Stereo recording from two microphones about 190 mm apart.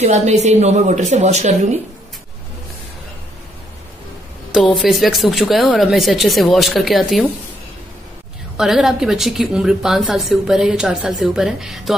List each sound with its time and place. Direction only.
0.0 s speech: 35° right (ahead or behind)
4.5 s a woman's voice: centre (ahead or behind)
8.5 s a woman's voice: centre (ahead or behind)